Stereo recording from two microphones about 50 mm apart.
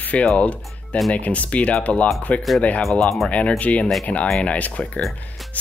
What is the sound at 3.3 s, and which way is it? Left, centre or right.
Speech, left.